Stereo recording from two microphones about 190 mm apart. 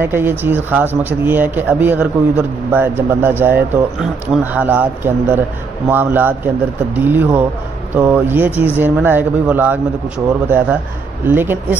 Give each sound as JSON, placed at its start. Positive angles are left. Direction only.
{"t": 0.0, "sound": "speech", "side_deg": -10}